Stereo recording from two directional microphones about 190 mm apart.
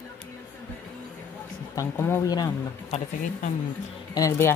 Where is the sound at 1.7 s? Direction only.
10° left (ahead or behind).